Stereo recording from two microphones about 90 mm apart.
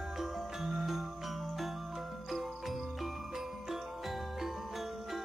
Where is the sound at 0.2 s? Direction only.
5° right (ahead or behind).